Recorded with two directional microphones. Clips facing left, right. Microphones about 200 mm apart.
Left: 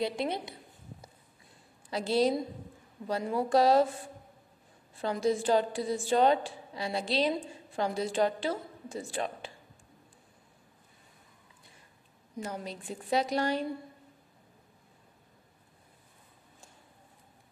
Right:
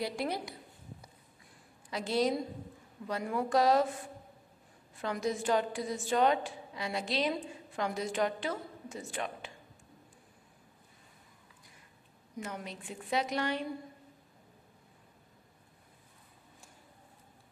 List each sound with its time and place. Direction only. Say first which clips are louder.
0.0 s a woman's voice: left 3 dB; 25° left (ahead or behind)
1.9 s a woman's voice: left 3 dB; 30° left (ahead or behind)
4.9 s a woman's voice: left 5 dB; 30° left (ahead or behind)
12.4 s a woman's voice: left 3 dB; 35° left (ahead or behind)